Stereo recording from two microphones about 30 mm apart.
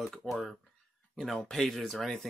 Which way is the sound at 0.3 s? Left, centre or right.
Centre.